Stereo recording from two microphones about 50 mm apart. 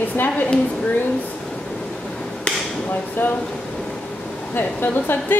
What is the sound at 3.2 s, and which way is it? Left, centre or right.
Speech, left.